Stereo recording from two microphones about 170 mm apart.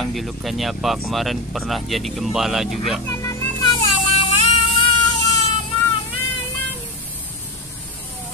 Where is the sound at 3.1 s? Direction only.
20° left (ahead or behind).